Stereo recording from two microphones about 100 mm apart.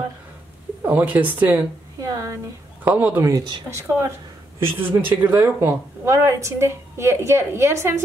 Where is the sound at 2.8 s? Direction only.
15° right (ahead or behind).